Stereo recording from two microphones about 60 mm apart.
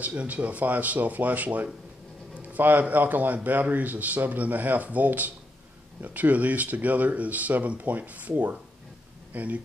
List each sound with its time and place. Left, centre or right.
0.0 s a man's voice: right